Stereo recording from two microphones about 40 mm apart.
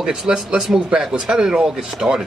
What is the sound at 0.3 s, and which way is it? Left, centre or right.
Speech, right.